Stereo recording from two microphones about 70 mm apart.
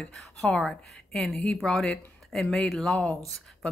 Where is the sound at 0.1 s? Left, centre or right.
Centre.